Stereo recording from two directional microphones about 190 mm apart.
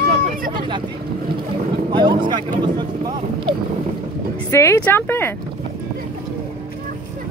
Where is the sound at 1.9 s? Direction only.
25° right (ahead or behind).